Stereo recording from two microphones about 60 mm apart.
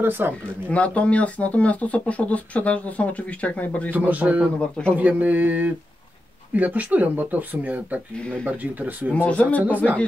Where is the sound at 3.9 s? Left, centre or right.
Right.